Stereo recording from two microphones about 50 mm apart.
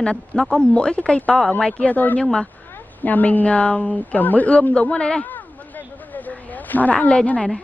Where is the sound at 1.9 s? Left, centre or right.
Left.